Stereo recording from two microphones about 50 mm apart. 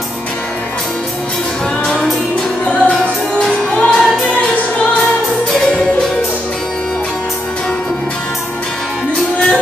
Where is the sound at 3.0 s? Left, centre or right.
Left.